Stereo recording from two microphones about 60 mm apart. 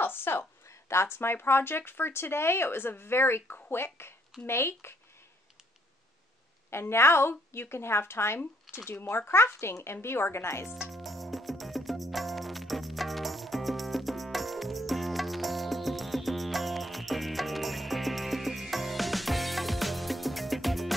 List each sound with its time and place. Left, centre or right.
0.0 s a sound: left
0.7 s a woman's voice: left
6.7 s a woman's voice: left
10.9 s music: centre